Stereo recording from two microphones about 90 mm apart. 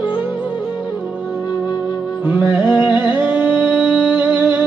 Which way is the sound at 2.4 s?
20° right (ahead or behind).